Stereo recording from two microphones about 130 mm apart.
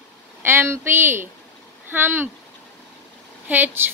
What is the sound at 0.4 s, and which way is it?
A woman's voice, 15° right (ahead or behind).